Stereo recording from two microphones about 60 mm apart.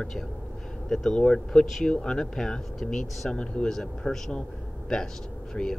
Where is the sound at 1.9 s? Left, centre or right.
Centre.